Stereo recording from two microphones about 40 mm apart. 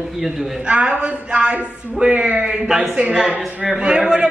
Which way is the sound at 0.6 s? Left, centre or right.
Right.